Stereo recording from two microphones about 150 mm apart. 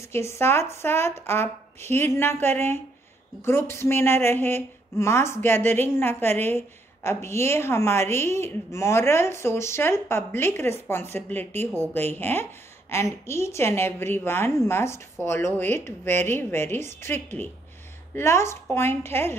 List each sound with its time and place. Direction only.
0.1 s a woman's voice: 15° left (ahead or behind)